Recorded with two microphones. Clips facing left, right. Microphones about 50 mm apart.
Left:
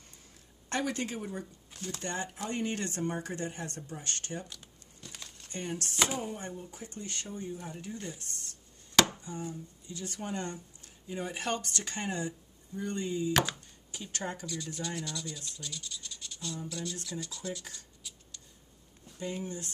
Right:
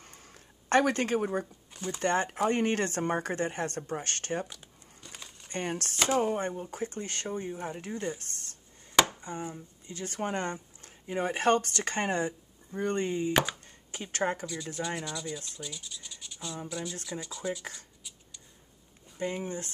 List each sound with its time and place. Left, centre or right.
0.0 s a sound: right
1.7 s a sound: centre
2.0 s speech: right
4.5 s crumpling: centre
5.5 s speech: right
13.3 s speech: centre
13.7 s a sound: right
14.4 s rub: centre
15.6 s scratch: centre
16.6 s rub: centre
17.7 s shuffling cards: centre
19.1 s speech: right